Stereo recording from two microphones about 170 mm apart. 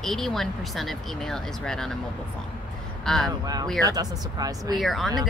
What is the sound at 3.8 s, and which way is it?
Speech, 20° right (ahead or behind).